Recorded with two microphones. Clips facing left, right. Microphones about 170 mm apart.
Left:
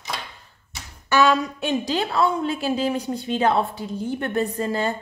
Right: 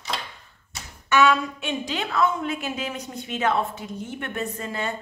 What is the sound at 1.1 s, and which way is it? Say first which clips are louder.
A woman's voice: left 1 dB; 35° left (ahead or behind).